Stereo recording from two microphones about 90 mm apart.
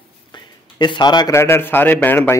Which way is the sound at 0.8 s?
55° left (ahead or behind).